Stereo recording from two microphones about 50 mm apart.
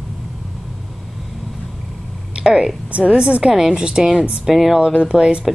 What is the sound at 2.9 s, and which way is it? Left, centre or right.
A woman's voice, right.